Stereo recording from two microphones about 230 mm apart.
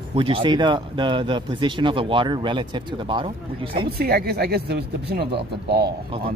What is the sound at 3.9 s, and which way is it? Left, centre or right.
Speech, right.